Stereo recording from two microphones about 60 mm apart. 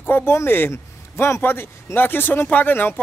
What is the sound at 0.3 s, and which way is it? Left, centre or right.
Speech, left.